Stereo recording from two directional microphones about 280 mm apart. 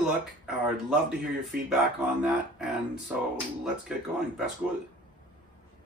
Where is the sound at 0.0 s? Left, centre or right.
Centre.